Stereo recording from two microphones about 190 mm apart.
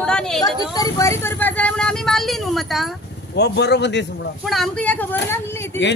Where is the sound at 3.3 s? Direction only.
60° left (ahead or behind).